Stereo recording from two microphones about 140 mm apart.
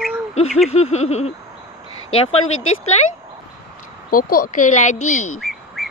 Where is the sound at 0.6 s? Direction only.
50° left (ahead or behind).